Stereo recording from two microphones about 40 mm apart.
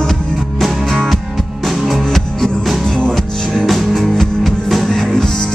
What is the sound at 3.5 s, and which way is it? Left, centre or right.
Music, centre.